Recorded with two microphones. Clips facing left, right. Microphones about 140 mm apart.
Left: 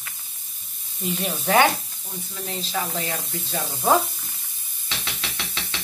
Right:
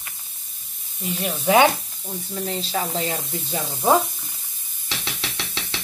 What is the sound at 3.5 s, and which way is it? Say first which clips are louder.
Speech: right 1 dB; 15° right (ahead or behind).